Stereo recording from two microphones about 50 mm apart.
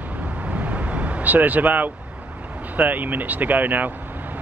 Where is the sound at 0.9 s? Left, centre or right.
Right.